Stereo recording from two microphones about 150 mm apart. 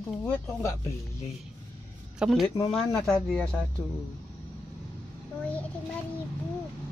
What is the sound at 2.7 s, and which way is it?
Speech, 5° left (ahead or behind).